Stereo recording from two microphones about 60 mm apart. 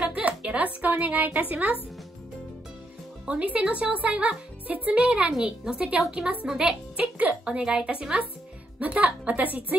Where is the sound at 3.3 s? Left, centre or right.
Right.